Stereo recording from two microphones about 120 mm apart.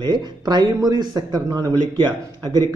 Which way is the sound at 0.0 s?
35° right (ahead or behind).